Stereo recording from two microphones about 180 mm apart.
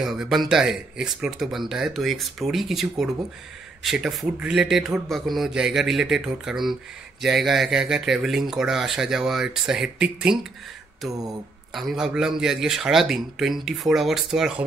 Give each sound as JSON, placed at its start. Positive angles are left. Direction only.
{"t": 0.0, "sound": "a man's voice", "side_deg": 0}
{"t": 11.1, "sound": "a sound", "side_deg": -20}
{"t": 11.7, "sound": "a man's voice", "side_deg": 0}